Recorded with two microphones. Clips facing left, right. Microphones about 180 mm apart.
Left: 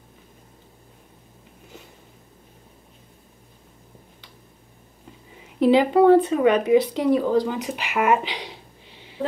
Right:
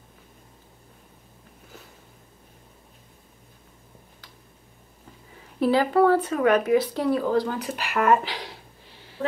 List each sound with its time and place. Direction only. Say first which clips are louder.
5.6 s speech: left 4 dB; 20° left (ahead or behind)